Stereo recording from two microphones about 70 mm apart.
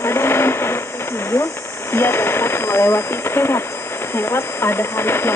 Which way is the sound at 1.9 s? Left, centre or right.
Left.